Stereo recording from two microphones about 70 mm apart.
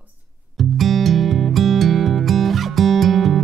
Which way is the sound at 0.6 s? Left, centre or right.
Centre.